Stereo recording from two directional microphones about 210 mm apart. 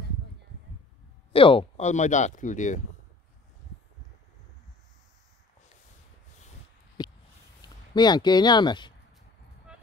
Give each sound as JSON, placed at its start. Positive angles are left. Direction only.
{"t": 1.3, "sound": "speech", "side_deg": 25}
{"t": 7.9, "sound": "speech", "side_deg": 20}